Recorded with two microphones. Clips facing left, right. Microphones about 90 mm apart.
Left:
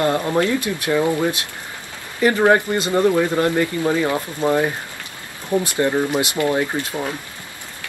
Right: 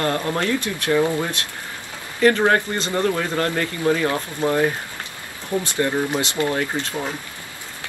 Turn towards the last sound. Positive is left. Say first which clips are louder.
# left 2 dB
turn(degrees=15)  # may be behind; listen again after turning